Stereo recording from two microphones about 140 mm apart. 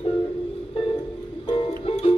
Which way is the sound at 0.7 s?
40° left (ahead or behind).